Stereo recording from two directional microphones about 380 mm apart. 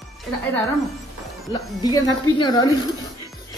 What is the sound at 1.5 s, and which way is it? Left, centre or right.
A woman's voice, centre.